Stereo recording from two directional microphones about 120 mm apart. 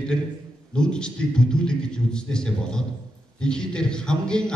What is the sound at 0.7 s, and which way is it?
A man's voice, 5° left (ahead or behind).